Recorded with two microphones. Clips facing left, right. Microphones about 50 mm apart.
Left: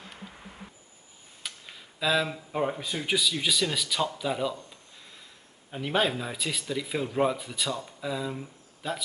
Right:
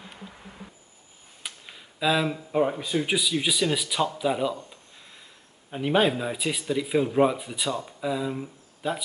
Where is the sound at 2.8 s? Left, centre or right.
Centre.